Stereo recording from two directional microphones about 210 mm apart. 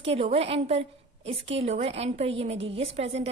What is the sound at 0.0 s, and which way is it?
A woman's voice, 25° right (ahead or behind).